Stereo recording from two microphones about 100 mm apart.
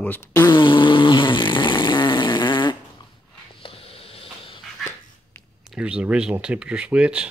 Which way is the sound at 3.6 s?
70° left (ahead or behind).